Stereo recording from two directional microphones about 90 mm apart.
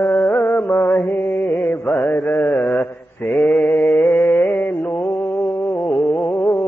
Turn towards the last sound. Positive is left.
turn(degrees=20)  # may be behind; listen again after turning